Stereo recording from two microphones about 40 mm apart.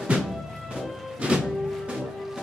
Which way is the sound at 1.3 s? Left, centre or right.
Right.